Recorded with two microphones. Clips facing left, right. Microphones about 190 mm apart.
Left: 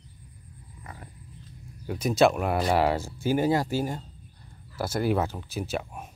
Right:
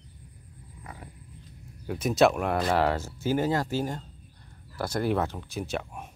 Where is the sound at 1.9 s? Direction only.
Centre (ahead or behind).